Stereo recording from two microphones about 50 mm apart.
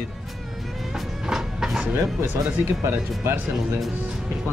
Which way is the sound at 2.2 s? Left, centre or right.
Right.